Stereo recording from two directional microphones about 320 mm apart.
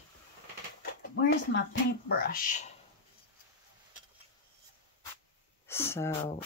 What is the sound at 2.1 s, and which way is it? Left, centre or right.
Speech, left.